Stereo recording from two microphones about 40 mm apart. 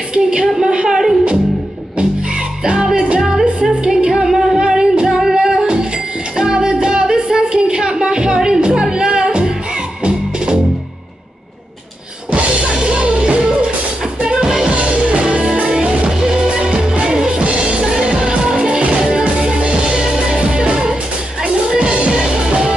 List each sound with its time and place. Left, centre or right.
0.1 s a woman's voice: right
2.6 s music: right
3.2 s music: centre
3.8 s music: centre
12.8 s music: right
14.4 s music: centre
14.7 s music: right